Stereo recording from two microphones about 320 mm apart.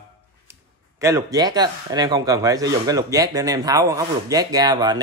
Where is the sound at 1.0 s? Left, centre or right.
Centre.